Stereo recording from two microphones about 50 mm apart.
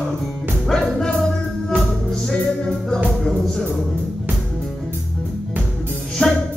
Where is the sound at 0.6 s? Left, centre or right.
Centre.